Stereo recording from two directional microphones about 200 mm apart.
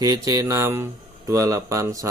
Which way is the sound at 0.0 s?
15° right (ahead or behind).